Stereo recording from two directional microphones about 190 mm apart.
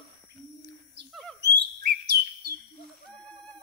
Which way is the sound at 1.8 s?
55° right (ahead or behind).